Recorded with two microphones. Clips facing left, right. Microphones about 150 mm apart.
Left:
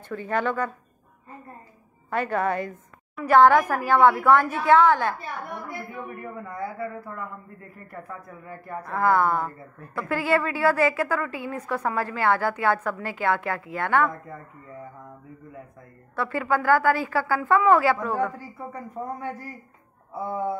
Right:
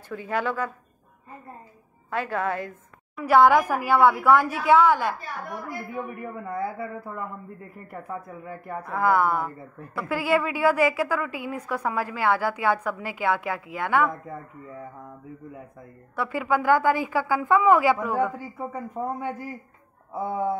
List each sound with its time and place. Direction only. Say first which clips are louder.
0.1 s a woman's voice: left 1 dB; 10° right (ahead or behind)
2.0 s a woman's voice: left 2 dB; centre (ahead or behind)
6.5 s a woman's voice: right 2 dB; 25° right (ahead or behind)
8.5 s a woman's voice: left 1 dB; 15° right (ahead or behind)
16.2 s a woman's voice: even; 10° right (ahead or behind)